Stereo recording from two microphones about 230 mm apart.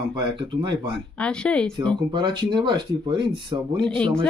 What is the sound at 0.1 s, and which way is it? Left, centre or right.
Speech, right.